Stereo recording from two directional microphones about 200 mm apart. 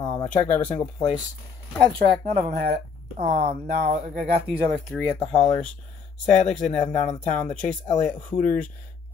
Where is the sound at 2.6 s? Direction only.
50° right (ahead or behind).